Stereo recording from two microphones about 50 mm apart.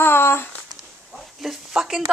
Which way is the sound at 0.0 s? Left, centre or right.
Left.